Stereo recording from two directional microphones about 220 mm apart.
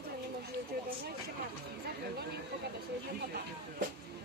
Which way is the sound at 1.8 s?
45° right (ahead or behind).